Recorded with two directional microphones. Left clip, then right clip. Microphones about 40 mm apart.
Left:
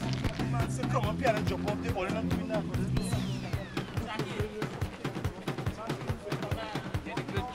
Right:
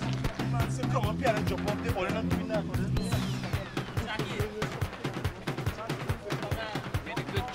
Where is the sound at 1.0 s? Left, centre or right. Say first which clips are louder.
Right 1 dB; centre.